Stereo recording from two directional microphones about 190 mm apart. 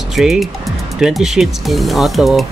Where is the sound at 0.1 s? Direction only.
Centre (ahead or behind).